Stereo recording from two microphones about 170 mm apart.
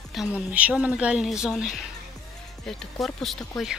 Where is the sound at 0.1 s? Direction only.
5° right (ahead or behind).